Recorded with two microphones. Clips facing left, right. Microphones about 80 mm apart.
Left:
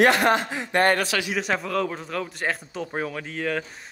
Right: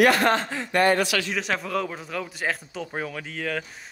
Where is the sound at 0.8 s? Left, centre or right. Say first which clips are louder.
Right 1 dB; left.